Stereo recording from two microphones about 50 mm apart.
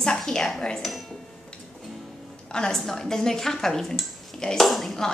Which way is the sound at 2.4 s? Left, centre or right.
Centre.